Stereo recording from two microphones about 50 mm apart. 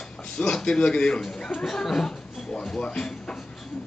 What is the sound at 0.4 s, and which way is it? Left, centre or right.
Speech, centre.